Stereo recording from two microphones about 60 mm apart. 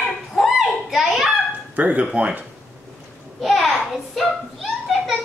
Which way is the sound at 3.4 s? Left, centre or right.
Centre.